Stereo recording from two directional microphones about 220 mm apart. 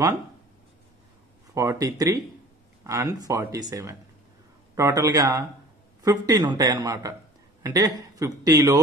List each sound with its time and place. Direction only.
1.5 s speech: 15° right (ahead or behind)